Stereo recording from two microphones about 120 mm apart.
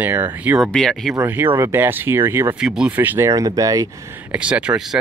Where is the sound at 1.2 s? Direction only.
15° right (ahead or behind).